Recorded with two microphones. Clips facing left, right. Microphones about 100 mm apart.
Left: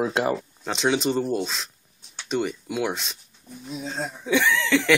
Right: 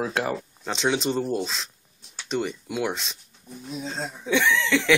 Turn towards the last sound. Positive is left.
turn(degrees=0)  # may be behind; listen again after turning